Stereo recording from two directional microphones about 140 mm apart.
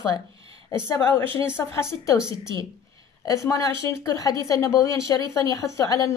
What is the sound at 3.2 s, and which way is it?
A woman's voice, 25° left (ahead or behind).